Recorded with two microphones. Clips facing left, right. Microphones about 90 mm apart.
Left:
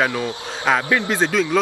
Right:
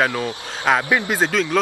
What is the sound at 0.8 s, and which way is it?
Speech, 20° right (ahead or behind).